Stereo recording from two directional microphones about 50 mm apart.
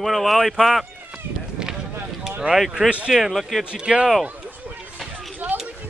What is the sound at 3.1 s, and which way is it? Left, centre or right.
Speech, centre.